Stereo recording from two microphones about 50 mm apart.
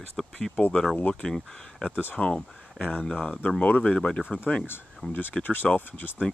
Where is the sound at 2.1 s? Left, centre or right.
Left.